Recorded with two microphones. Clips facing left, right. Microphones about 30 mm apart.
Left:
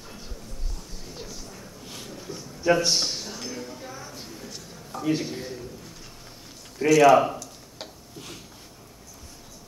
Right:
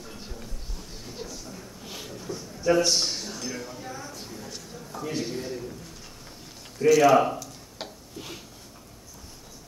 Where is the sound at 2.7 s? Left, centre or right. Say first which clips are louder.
Right 1 dB; centre.